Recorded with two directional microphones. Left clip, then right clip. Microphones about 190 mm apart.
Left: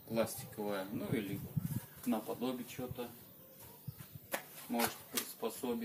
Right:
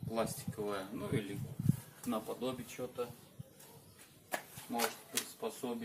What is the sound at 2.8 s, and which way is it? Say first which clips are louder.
Speech: right 2 dB; 25° right (ahead or behind).